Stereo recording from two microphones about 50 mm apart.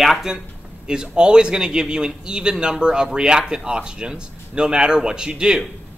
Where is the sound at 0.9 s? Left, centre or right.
Centre.